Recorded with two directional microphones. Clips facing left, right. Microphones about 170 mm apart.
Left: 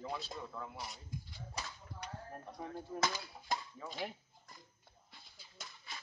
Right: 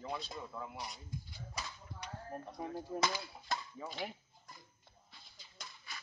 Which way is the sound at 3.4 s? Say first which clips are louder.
Left 3 dB; 15° left (ahead or behind).